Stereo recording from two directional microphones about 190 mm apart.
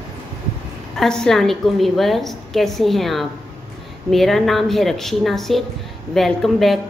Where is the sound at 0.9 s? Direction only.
5° left (ahead or behind).